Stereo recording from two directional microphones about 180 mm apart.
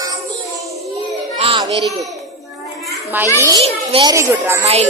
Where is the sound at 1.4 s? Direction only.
30° right (ahead or behind).